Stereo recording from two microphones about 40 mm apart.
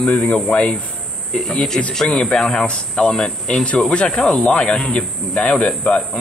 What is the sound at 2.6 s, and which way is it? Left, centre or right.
Speech, left.